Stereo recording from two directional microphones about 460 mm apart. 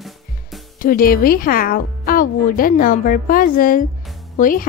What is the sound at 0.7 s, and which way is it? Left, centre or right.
Speech, centre.